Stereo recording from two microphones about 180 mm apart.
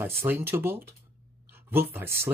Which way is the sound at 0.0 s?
10° right (ahead or behind).